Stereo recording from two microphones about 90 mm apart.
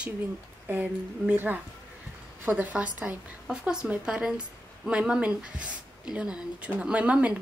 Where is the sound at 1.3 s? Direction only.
20° right (ahead or behind).